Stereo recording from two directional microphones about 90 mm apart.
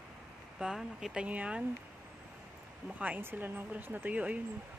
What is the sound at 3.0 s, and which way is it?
Speech, 20° right (ahead or behind).